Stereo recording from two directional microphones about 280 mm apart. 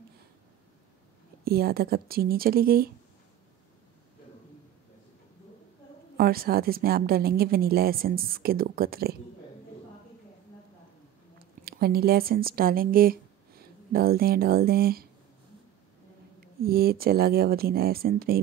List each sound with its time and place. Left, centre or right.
1.4 s a woman's voice: right
6.1 s a woman's voice: right
11.6 s speech: right
16.3 s a woman's voice: right